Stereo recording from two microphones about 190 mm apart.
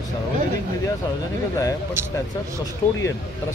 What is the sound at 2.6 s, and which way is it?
Speech, 15° left (ahead or behind).